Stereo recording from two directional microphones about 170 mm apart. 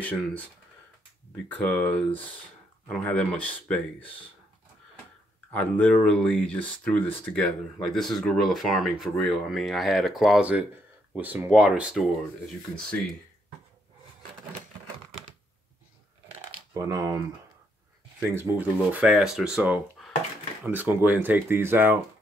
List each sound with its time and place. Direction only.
0.0 s speech: 10° left (ahead or behind)
1.5 s speech: 10° left (ahead or behind)
5.5 s speech: 10° left (ahead or behind)
16.7 s speech: 20° right (ahead or behind)
18.3 s speech: 10° right (ahead or behind)